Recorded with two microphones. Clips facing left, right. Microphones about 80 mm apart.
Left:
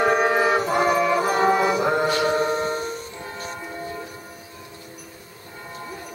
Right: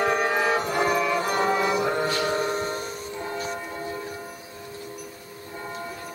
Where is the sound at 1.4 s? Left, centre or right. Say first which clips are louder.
Left 4 dB; centre.